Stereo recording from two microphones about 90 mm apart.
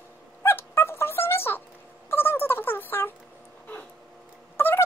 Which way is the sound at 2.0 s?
25° left (ahead or behind).